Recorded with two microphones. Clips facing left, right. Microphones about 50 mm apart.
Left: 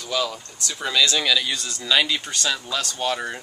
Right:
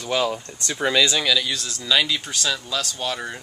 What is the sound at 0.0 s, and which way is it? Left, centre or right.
Speech, right.